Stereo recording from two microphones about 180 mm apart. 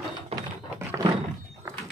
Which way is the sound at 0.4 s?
20° right (ahead or behind).